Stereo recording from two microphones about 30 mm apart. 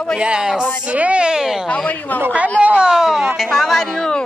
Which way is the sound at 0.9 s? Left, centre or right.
Right.